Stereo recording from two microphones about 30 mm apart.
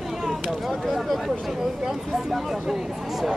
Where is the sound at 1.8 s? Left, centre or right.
Centre.